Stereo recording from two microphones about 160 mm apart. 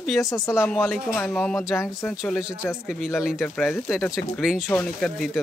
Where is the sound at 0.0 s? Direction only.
Centre (ahead or behind).